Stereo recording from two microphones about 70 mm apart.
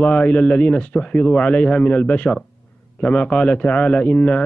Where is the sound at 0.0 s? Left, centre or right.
Centre.